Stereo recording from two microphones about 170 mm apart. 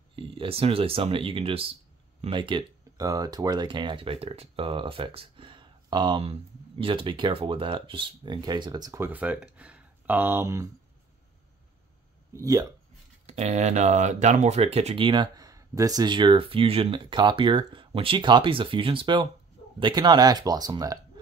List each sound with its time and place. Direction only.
0.1 s speech: 30° right (ahead or behind)
12.3 s speech: 20° right (ahead or behind)
13.3 s speech: 40° right (ahead or behind); by 21.0 s 20° right (ahead or behind)